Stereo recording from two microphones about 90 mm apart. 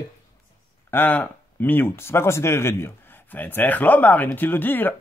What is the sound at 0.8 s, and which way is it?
Speech, 20° left (ahead or behind).